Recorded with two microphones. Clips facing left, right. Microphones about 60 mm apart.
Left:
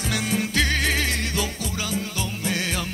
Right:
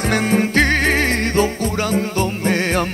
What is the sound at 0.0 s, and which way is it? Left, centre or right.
Music, right.